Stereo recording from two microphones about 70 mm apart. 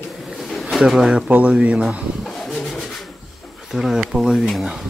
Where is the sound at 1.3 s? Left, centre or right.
Centre.